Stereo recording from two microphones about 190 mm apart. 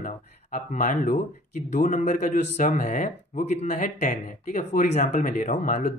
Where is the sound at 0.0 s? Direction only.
45° left (ahead or behind).